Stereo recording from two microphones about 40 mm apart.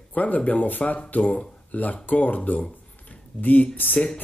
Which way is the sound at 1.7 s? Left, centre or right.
Left.